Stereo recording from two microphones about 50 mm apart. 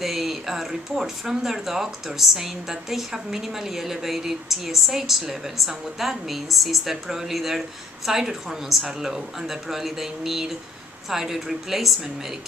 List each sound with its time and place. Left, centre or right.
0.0 s a woman's voice: centre